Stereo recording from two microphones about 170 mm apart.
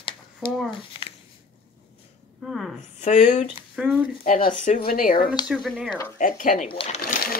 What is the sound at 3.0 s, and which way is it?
Speech, 45° left (ahead or behind).